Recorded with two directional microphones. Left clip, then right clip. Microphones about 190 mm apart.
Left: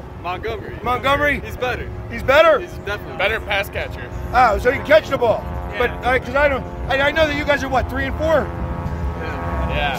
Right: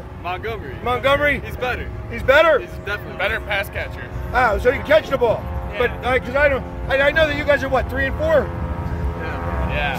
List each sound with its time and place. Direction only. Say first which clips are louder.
0.2 s speech: left 1 dB; 5° left (ahead or behind)
0.8 s speech: even; 20° right (ahead or behind)
1.6 s speech: left 1 dB; 25° left (ahead or behind)
2.1 s speech: left 1 dB; 10° right (ahead or behind)
3.2 s speech: left 2 dB; 60° left (ahead or behind)
4.3 s speech: left 2 dB; 15° right (ahead or behind)
9.7 s vehicle: left 1 dB; 50° left (ahead or behind)